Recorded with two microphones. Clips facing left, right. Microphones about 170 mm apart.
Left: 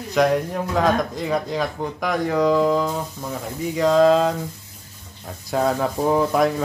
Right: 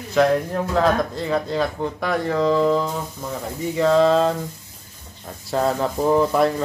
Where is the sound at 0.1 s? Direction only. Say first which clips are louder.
Right 1 dB; centre (ahead or behind).